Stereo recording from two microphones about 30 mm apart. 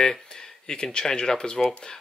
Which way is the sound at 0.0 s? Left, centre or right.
Centre.